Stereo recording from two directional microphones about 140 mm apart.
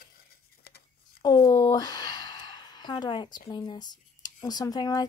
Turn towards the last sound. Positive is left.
turn(degrees=25)  # may be behind; listen again after turning